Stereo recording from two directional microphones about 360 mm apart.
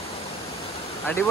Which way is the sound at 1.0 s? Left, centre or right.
Centre.